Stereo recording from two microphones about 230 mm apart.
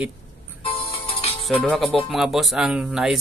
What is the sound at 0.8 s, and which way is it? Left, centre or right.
Music, left.